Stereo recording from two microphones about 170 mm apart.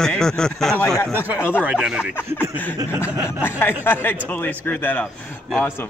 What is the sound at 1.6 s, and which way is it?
Speech, 5° right (ahead or behind).